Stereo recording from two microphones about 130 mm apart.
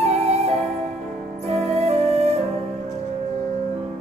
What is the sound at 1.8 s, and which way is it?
Music, 55° right (ahead or behind).